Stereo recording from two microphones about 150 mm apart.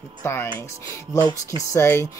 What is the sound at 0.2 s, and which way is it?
Speech, 15° left (ahead or behind).